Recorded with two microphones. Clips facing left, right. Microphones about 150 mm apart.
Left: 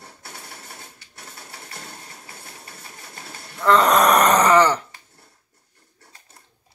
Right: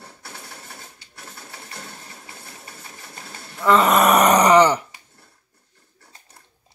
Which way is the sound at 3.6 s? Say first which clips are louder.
Even; 5° right (ahead or behind).